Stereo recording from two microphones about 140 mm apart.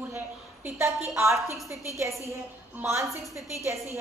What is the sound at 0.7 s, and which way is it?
Speech, 20° right (ahead or behind).